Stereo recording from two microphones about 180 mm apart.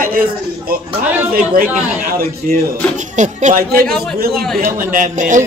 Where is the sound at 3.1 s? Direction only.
40° right (ahead or behind).